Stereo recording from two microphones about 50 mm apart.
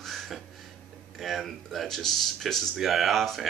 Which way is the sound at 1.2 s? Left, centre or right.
Centre.